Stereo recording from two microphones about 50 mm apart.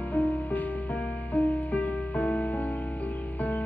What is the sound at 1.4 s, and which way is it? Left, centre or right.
Music, left.